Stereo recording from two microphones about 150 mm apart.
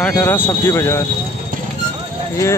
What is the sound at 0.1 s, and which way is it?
Speech, 15° left (ahead or behind).